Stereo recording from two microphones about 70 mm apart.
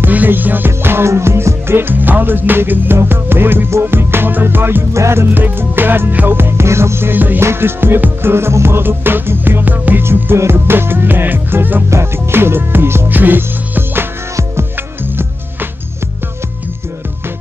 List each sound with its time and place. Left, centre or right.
0.0 s music: right
4.9 s music: right
5.3 s music: right